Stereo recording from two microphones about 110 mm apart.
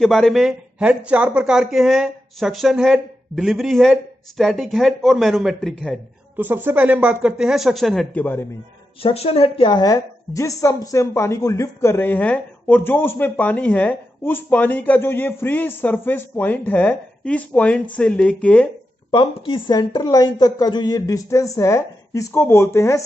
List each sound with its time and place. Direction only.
0.0 s speech: 5° left (ahead or behind)
0.8 s speech: 10° right (ahead or behind); by 5.9 s 5° left (ahead or behind)
6.3 s speech: 15° right (ahead or behind); by 8.1 s centre (ahead or behind)
8.1 s speech: 15° left (ahead or behind)
9.0 s speech: 65° left (ahead or behind)
9.8 s speech: 30° left (ahead or behind); by 18.7 s 10° left (ahead or behind)
19.3 s speech: 55° left (ahead or behind)
19.7 s a woman's voice: 40° left (ahead or behind)